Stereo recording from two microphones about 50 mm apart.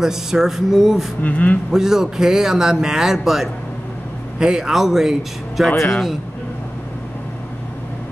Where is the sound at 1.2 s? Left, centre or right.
Left.